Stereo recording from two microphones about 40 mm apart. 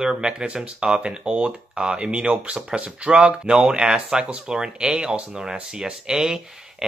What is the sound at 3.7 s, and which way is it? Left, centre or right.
Speech, centre.